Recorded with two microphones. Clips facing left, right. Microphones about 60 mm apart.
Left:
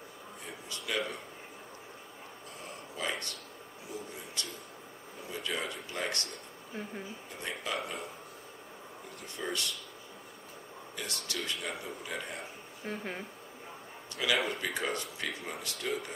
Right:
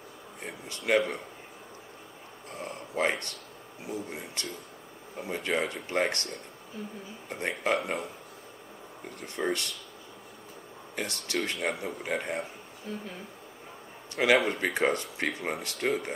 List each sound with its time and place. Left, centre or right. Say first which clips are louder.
0.4 s a sound: right 5 dB; right
2.6 s a sound: right 9 dB; right
3.9 s speech: right 5 dB; right
6.7 s speech: right 1 dB; left
7.2 s speech: right 10 dB; right
9.4 s speech: right 8 dB; right
11.0 s speech: right 7 dB; right
12.8 s speech: left 1 dB; left
14.1 s speech: right 7 dB; right